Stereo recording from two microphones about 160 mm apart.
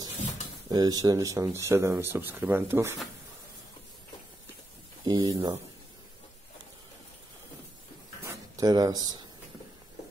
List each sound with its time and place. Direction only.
0.7 s speech: 25° right (ahead or behind)
5.0 s speech: 25° right (ahead or behind)
8.2 s a sound: 20° right (ahead or behind)